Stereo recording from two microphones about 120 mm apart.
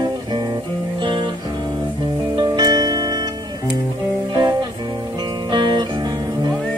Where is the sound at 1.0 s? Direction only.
45° right (ahead or behind).